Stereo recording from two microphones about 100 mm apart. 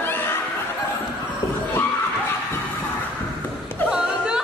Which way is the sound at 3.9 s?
5° right (ahead or behind).